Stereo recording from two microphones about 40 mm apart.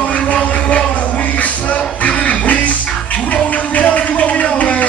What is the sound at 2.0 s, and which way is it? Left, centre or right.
Music, left.